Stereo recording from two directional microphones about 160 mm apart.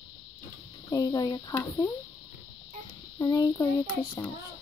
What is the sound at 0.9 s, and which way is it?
Speech, 25° left (ahead or behind).